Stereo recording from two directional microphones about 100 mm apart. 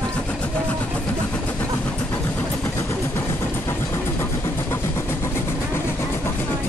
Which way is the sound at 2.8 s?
30° left (ahead or behind).